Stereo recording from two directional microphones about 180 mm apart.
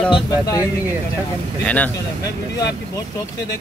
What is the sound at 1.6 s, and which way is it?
Speech, 10° left (ahead or behind).